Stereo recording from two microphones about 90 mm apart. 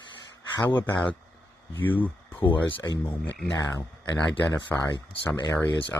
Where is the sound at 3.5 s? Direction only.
40° left (ahead or behind).